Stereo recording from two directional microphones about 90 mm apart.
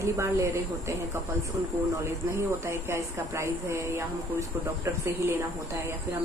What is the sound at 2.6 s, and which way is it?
A woman's voice, 30° right (ahead or behind).